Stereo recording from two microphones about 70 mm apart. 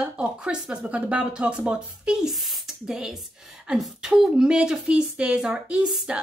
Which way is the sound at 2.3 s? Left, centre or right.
Centre.